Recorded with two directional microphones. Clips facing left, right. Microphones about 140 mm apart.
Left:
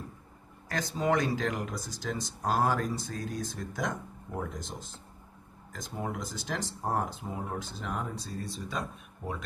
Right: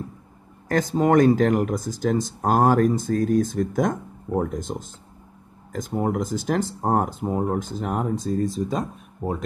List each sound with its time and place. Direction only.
0.7 s speech: 45° right (ahead or behind)